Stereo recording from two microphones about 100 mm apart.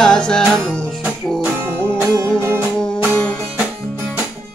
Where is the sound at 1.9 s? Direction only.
25° right (ahead or behind).